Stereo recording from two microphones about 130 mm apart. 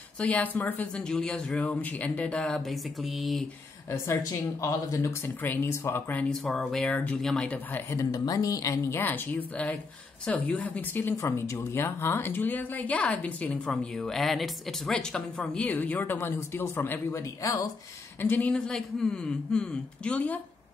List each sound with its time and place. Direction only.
0.2 s speech: 10° left (ahead or behind)
3.9 s speech: 20° left (ahead or behind)
6.4 s speech: 5° left (ahead or behind)
8.0 s speech: 30° left (ahead or behind)
18.2 s speech: 15° left (ahead or behind)